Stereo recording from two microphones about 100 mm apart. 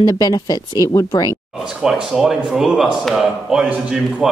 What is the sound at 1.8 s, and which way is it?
A man's voice, 5° right (ahead or behind).